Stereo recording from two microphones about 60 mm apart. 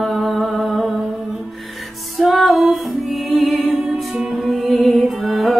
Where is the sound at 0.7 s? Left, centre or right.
Right.